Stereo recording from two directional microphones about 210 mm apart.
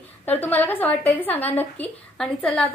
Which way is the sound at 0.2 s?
10° left (ahead or behind).